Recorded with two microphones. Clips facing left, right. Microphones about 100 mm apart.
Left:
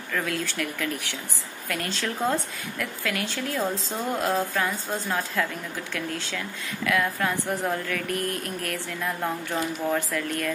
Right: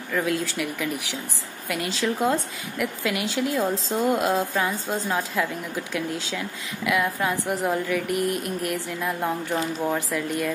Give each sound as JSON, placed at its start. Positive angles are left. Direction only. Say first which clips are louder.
{"t": 0.1, "sound": "speech", "louder": "right 4 dB", "side_deg": -15}